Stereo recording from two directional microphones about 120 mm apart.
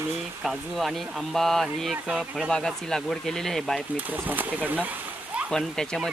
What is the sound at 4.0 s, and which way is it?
Speech, 15° right (ahead or behind).